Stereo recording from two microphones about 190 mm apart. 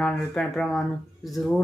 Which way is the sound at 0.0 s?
5° left (ahead or behind).